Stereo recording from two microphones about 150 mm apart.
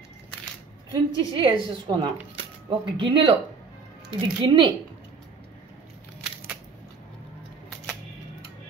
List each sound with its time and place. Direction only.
0.9 s a woman's voice: 35° right (ahead or behind)